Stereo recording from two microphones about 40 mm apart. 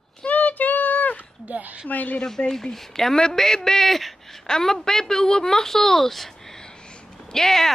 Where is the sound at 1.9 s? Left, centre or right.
Left.